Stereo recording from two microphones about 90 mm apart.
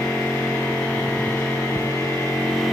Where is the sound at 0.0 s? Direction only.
15° left (ahead or behind).